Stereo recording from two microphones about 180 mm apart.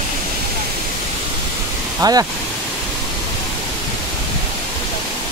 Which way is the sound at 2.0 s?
20° right (ahead or behind).